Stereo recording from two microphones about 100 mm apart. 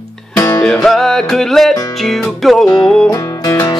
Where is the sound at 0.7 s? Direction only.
5° left (ahead or behind).